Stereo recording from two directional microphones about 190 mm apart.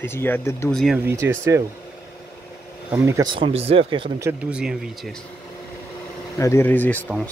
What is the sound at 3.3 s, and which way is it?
Speech, 30° right (ahead or behind).